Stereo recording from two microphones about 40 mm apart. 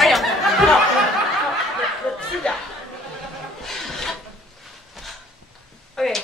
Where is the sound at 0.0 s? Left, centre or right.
Centre.